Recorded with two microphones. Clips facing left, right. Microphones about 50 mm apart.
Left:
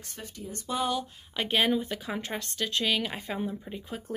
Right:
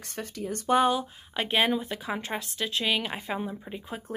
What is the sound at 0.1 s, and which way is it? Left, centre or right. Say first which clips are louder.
Speech: right 7 dB; right.